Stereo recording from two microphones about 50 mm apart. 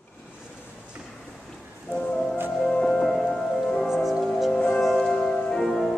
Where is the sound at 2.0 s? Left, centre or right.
Centre.